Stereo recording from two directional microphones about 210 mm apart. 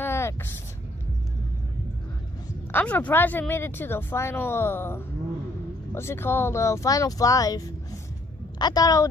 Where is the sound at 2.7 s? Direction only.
5° left (ahead or behind).